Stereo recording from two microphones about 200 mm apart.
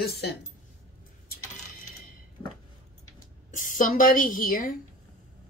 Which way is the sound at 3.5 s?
40° left (ahead or behind).